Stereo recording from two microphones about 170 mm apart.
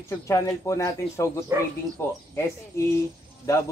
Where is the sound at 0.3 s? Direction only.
20° left (ahead or behind).